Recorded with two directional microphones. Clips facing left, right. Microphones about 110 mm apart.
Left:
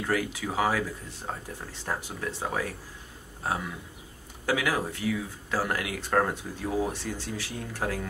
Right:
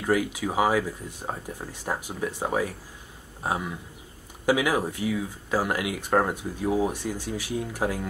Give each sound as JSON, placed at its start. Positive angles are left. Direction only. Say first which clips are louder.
{"t": 0.0, "sound": "speech", "louder": "right 4 dB", "side_deg": -15}
{"t": 4.5, "sound": "speech", "louder": "right 4 dB", "side_deg": -15}